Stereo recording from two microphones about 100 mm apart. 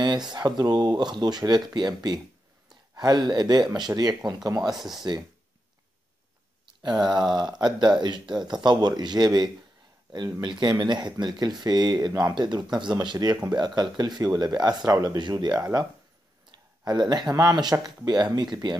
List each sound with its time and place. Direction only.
0.0 s speech: 45° right (ahead or behind)
4.7 s speech: 5° right (ahead or behind)
6.8 s speech: 45° right (ahead or behind)
16.8 s speech: 45° right (ahead or behind)